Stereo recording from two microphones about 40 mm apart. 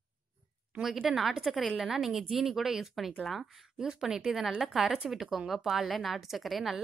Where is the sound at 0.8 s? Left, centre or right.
Centre.